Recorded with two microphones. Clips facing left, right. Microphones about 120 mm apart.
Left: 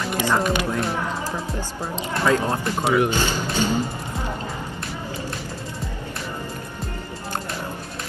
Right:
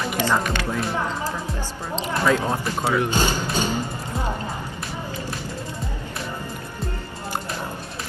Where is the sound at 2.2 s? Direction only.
Centre (ahead or behind).